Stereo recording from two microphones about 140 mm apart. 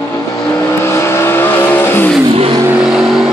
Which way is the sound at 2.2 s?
40° right (ahead or behind).